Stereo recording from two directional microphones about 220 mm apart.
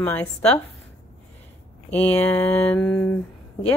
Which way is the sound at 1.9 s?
5° left (ahead or behind).